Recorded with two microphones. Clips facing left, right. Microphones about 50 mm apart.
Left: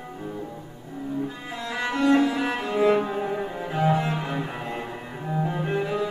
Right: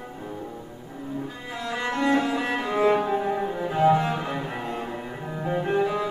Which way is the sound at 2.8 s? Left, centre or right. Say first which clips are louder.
Right 1 dB; centre.